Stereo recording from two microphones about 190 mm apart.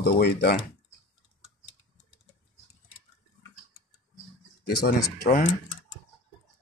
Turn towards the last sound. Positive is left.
turn(degrees=45)  # may be behind; listen again after turning